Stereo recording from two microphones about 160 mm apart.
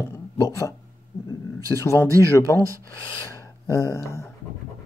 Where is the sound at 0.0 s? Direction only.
20° left (ahead or behind).